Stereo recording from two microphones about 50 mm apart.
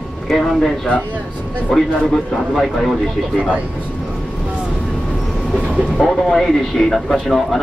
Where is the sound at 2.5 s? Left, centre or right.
Centre.